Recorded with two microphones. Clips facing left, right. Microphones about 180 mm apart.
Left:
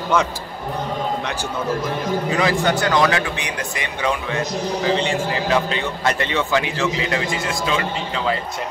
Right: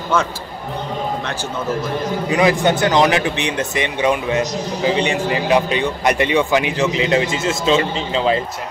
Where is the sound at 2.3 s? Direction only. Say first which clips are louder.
Right 5 dB; 15° right (ahead or behind).